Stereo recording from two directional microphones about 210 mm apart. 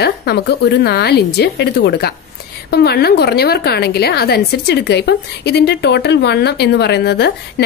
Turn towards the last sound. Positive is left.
turn(degrees=50)  # may be behind; listen again after turning